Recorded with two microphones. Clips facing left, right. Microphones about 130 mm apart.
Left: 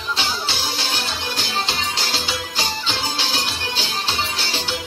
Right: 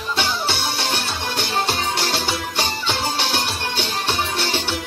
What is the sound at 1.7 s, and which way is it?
Music, 60° right (ahead or behind).